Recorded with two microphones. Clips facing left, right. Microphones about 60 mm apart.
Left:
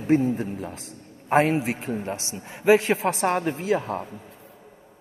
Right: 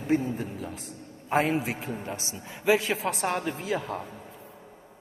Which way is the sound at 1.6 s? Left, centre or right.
Left.